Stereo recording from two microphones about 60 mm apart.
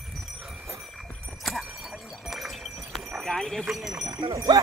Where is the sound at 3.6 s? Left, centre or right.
Centre.